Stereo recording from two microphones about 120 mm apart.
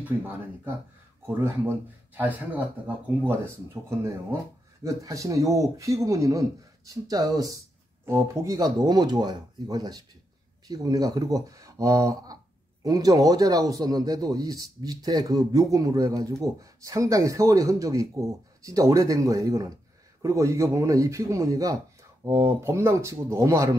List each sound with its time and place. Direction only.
1.2 s speech: 20° right (ahead or behind)
4.8 s a man's voice: 25° right (ahead or behind)